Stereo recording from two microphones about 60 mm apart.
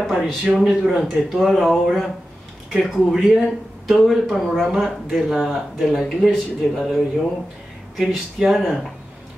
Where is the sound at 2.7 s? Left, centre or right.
Centre.